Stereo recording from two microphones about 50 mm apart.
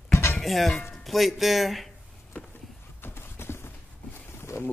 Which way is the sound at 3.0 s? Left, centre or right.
Left.